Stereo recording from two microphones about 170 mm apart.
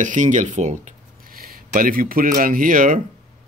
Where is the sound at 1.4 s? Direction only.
60° right (ahead or behind).